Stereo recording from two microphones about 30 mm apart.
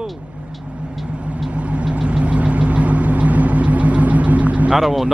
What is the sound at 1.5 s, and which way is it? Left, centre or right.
Vehicle, right.